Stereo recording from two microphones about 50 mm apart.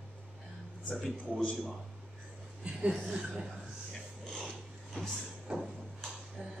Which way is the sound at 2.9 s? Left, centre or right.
Centre.